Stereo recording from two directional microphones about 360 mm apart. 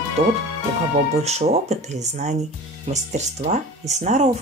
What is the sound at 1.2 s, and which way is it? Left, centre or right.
Speech, centre.